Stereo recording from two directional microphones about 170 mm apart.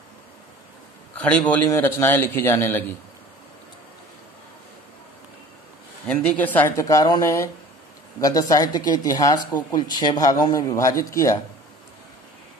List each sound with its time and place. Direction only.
1.1 s a man's voice: 10° left (ahead or behind)
6.0 s a man's voice: 10° left (ahead or behind)